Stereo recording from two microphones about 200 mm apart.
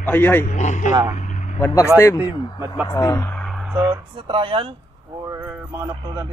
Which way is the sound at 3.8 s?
25° right (ahead or behind).